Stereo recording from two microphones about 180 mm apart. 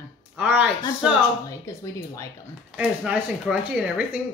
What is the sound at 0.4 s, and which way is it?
Speech, 5° right (ahead or behind).